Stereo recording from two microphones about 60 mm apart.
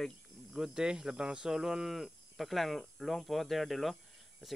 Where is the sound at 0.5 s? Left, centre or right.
Centre.